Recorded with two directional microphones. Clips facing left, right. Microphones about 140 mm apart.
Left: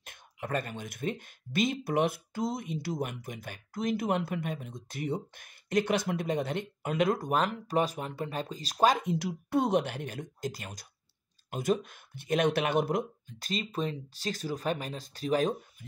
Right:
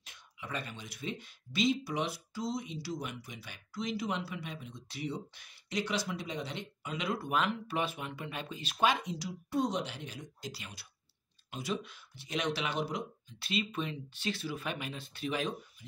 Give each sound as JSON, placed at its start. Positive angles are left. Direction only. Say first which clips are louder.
{"t": 0.0, "sound": "speech", "louder": "left 7 dB", "side_deg": 50}